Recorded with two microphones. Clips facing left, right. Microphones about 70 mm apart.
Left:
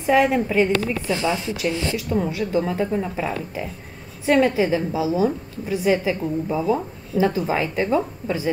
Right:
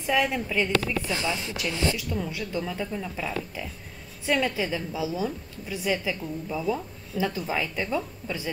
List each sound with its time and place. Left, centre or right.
0.0 s a woman's voice: left
1.3 s a woman's voice: left